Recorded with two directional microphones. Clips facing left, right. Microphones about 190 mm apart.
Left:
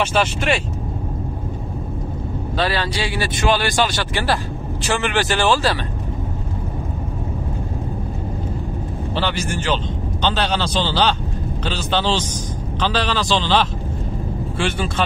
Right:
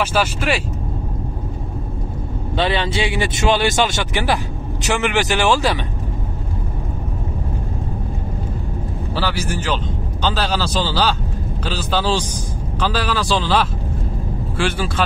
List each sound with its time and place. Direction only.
0.0 s speech: 10° right (ahead or behind)
2.5 s speech: 20° right (ahead or behind)
9.1 s speech: 5° right (ahead or behind)